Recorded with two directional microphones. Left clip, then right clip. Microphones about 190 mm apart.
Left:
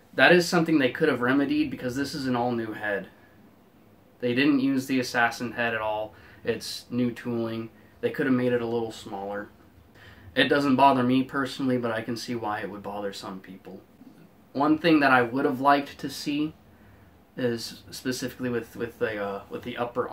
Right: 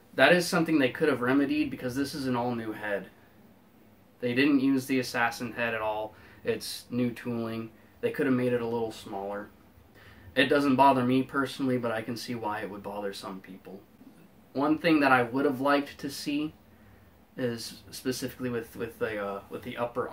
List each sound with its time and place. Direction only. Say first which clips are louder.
0.1 s speech: left 3 dB; 10° left (ahead or behind)
4.2 s speech: left 2 dB; 15° left (ahead or behind)
14.5 s speech: left 4 dB; 15° left (ahead or behind)
17.4 s speech: left 4 dB; 15° left (ahead or behind)